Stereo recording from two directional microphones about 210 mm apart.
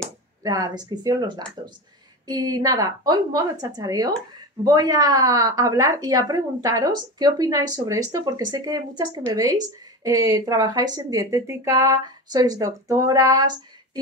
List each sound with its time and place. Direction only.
0.4 s a woman's voice: 15° right (ahead or behind)